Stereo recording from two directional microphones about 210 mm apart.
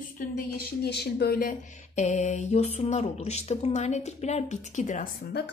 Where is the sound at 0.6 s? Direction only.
50° left (ahead or behind); by 5.0 s 35° left (ahead or behind).